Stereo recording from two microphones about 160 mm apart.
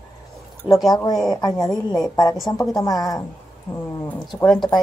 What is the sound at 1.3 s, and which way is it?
A woman's voice, 25° left (ahead or behind).